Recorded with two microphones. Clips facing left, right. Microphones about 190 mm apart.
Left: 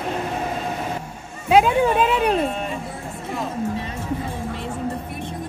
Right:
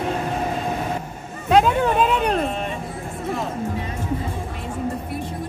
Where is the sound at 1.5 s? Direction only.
5° left (ahead or behind).